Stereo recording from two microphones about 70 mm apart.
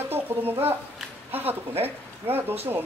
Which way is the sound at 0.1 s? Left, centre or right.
Right.